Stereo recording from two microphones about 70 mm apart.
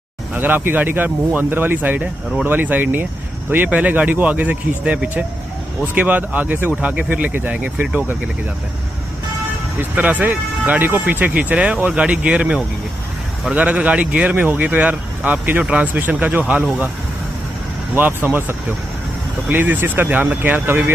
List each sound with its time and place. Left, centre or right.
0.3 s speech: right
9.8 s speech: right
17.9 s speech: right